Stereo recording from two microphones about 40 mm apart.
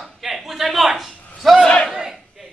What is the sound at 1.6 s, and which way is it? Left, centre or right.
Speech, left.